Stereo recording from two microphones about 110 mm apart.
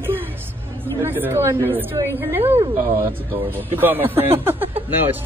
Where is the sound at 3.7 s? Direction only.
20° right (ahead or behind).